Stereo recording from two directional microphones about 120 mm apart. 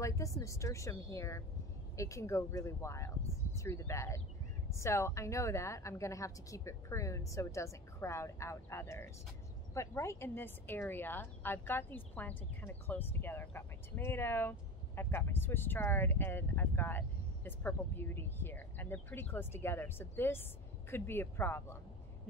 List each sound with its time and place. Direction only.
0.0 s a woman's voice: 25° left (ahead or behind)